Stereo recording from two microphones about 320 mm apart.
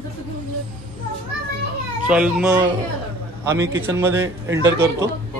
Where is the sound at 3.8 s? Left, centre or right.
Centre.